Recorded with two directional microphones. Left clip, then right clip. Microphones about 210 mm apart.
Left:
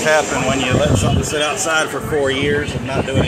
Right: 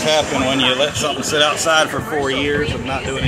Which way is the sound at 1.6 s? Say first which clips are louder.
Right 2 dB; 10° right (ahead or behind).